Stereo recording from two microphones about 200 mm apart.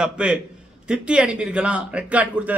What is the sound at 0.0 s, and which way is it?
Speech, 5° right (ahead or behind).